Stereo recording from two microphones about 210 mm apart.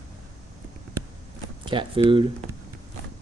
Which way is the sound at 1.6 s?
25° right (ahead or behind).